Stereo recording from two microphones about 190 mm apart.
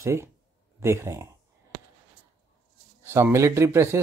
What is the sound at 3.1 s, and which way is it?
Speech, 15° right (ahead or behind).